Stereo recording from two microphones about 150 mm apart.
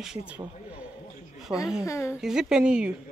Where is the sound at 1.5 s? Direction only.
35° right (ahead or behind).